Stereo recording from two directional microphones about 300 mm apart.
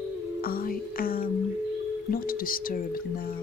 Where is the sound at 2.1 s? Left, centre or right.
Left.